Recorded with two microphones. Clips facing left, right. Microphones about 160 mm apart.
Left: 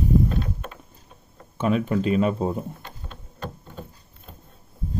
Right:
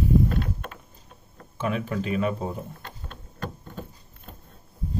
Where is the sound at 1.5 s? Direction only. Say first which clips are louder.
Left 5 dB; 25° left (ahead or behind).